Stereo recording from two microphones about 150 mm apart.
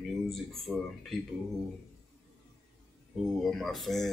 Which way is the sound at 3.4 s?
Centre (ahead or behind).